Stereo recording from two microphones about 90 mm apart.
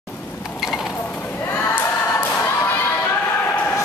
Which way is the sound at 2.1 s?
20° left (ahead or behind).